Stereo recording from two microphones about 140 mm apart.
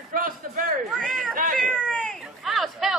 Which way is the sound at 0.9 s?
Centre (ahead or behind).